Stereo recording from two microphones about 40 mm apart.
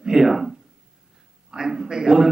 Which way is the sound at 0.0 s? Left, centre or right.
Centre.